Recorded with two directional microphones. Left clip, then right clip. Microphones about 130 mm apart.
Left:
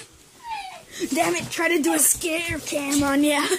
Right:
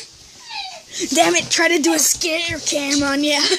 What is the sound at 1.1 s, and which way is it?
A woman's voice, 30° right (ahead or behind).